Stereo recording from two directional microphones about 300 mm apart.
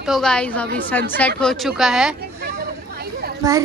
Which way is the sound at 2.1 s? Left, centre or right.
Right.